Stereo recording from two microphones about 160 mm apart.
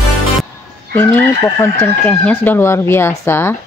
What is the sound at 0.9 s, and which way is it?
Speech, 10° left (ahead or behind).